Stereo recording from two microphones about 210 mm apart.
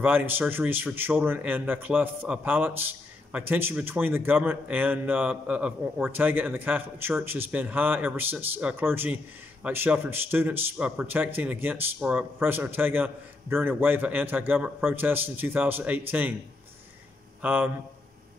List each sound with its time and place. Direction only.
0.0 s speech: 10° right (ahead or behind)
17.4 s speech: 10° right (ahead or behind)